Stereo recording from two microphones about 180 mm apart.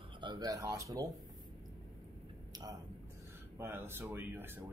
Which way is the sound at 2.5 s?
20° right (ahead or behind).